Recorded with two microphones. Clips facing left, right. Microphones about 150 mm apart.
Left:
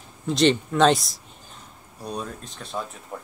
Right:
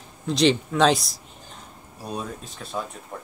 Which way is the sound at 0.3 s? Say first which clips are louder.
Even; centre (ahead or behind).